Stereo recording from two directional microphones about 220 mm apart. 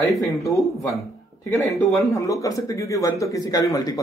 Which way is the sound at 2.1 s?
15° left (ahead or behind).